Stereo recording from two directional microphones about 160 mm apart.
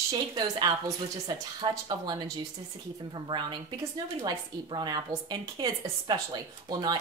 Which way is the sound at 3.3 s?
30° right (ahead or behind).